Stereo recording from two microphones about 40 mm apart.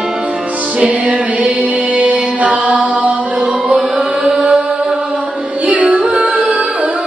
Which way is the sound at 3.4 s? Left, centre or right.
Centre.